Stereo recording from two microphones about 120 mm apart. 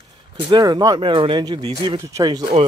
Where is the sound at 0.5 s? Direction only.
35° right (ahead or behind).